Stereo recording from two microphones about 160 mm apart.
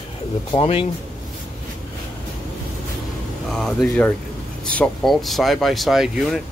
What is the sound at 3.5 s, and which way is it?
Speech, centre (ahead or behind).